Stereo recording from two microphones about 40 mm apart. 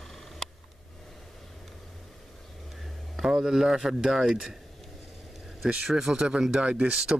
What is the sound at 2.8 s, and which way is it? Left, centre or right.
Speech, centre.